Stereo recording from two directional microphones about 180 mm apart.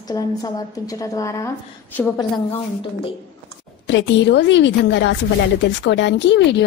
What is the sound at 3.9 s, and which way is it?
A woman's voice, 80° left.